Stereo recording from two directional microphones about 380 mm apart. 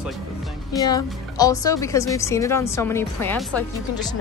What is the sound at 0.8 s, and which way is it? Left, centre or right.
Speech, centre.